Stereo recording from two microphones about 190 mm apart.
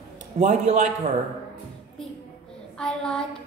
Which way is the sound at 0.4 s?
35° right (ahead or behind).